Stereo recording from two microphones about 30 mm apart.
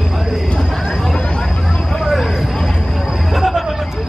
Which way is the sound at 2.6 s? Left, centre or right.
Centre.